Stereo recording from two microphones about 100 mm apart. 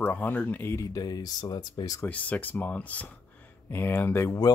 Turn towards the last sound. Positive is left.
turn(degrees=30)  # may be behind; listen again after turning